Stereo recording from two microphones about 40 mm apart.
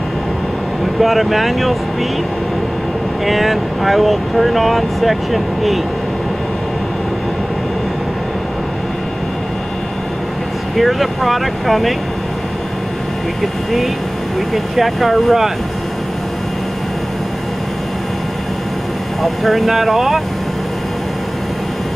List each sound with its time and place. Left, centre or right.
0.9 s speech: centre
3.3 s speech: centre
10.8 s speech: centre
13.4 s speech: centre
19.2 s speech: centre